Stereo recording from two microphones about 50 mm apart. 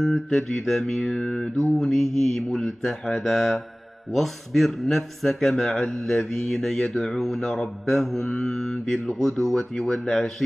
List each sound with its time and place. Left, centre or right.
0.0 s speech: centre
9.8 s speech: left
10.0 s speech: centre